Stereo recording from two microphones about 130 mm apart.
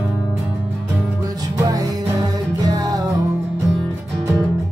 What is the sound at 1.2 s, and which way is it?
Music, 30° right (ahead or behind).